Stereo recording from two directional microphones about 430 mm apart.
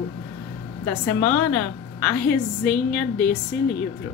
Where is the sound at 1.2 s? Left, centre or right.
Centre.